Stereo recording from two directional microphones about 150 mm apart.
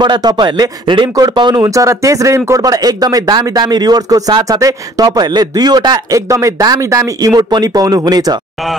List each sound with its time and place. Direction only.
0.0 s a man's voice: 30° right (ahead or behind)